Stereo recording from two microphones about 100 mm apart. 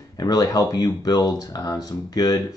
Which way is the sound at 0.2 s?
40° left (ahead or behind).